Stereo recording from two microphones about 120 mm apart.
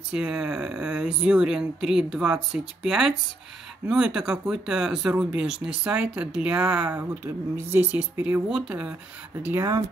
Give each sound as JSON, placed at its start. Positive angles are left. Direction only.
{"t": 0.1, "sound": "speech", "side_deg": -5}